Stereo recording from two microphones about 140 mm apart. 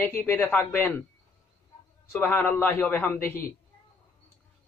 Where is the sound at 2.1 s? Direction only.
15° left (ahead or behind).